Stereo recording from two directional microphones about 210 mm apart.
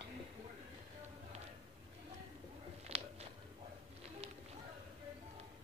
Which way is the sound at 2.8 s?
30° right (ahead or behind).